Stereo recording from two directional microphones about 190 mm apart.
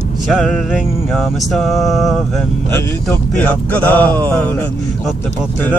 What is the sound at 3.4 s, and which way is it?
A man's voice, 10° left (ahead or behind).